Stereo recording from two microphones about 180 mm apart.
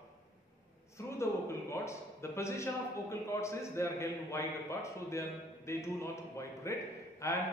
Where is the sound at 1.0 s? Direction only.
15° left (ahead or behind).